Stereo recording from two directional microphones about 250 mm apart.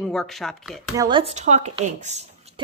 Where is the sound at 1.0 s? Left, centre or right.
Right.